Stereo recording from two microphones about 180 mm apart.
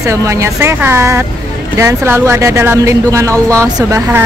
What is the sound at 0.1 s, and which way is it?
Speech, 15° right (ahead or behind).